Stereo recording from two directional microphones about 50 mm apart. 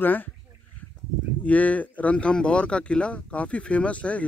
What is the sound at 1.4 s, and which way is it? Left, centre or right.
Speech, left.